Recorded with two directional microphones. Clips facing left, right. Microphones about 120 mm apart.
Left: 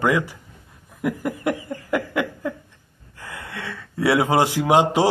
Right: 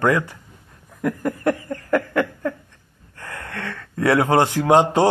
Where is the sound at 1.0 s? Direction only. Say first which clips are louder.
Right 2 dB; 15° left (ahead or behind).